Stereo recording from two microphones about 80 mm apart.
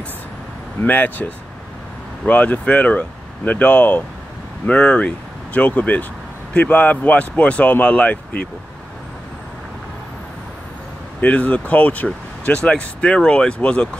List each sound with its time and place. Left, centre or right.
0.8 s speech: left
11.1 s speech: centre